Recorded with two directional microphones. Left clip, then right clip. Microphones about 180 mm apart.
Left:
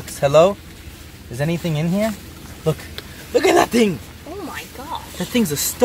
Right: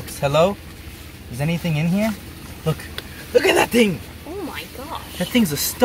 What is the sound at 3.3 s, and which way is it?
Speech, 50° left (ahead or behind).